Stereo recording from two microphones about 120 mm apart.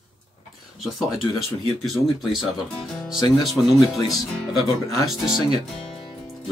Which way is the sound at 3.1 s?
35° left (ahead or behind).